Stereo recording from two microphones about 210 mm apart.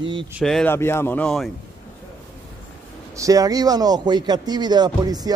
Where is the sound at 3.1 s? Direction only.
15° right (ahead or behind).